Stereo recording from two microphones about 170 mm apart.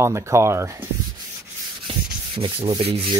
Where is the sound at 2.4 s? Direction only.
30° right (ahead or behind).